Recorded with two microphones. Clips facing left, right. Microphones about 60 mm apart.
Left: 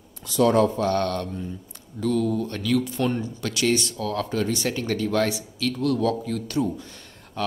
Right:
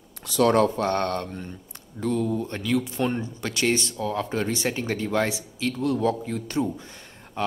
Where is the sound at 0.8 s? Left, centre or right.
Right.